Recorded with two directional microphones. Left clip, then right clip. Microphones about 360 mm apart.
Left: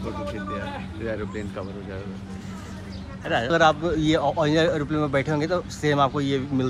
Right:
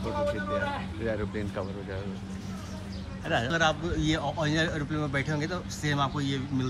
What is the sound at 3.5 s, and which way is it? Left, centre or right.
Speech, centre.